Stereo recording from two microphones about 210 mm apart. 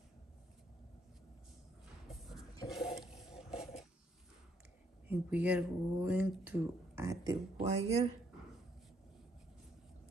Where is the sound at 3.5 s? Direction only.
30° left (ahead or behind).